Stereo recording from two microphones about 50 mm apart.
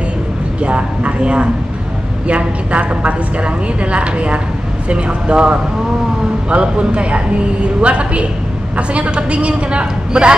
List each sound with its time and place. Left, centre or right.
0.6 s a woman's voice: right